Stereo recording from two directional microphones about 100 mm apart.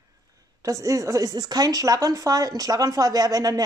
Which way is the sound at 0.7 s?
30° right (ahead or behind).